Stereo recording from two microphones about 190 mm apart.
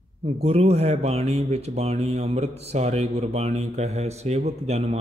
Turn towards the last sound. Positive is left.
turn(degrees=-35)  # may be behind; listen again after turning